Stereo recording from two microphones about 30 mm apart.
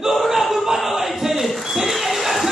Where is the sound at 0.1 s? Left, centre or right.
Centre.